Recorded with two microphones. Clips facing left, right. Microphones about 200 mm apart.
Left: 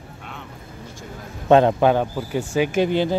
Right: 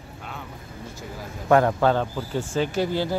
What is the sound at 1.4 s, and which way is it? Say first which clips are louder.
Speech: left 4 dB; 20° left (ahead or behind).